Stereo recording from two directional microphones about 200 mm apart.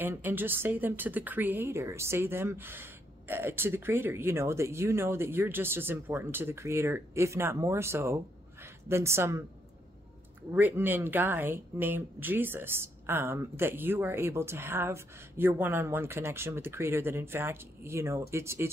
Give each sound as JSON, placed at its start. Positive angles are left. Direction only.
{"t": 0.0, "sound": "a woman's voice", "side_deg": -10}
{"t": 10.5, "sound": "speech", "side_deg": -10}